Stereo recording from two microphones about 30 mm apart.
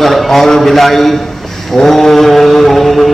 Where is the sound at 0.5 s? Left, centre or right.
Centre.